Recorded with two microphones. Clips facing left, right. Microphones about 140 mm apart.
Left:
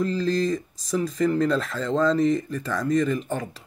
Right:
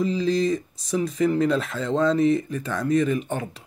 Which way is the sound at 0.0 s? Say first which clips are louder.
Right 1 dB; centre (ahead or behind).